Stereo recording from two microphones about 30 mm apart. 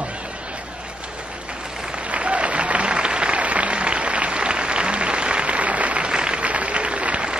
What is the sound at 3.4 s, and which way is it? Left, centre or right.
Applause, right.